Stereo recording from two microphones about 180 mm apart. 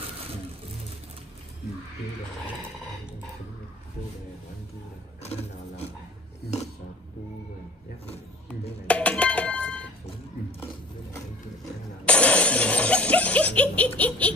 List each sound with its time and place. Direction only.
5.2 s a sound: 35° left (ahead or behind)
8.8 s music: 5° left (ahead or behind)
12.0 s shatter: 5° left (ahead or behind)